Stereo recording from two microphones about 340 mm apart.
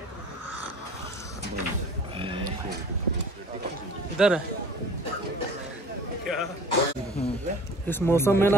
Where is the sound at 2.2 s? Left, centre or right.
Centre.